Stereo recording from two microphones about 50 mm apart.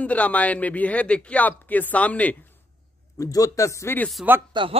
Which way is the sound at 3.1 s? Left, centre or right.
Left.